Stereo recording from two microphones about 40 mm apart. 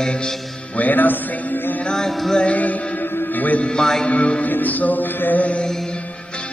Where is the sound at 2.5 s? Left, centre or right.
Left.